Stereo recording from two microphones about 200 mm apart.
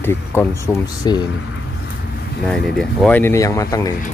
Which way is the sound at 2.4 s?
Centre (ahead or behind).